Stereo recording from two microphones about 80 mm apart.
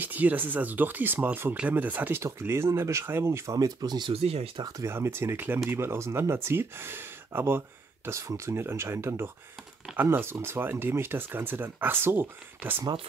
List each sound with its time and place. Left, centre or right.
0.0 s speech: right
3.5 s speech: right
4.8 s speech: right